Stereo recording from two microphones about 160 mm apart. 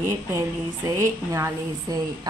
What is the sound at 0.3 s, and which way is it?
A woman's voice, 20° right (ahead or behind).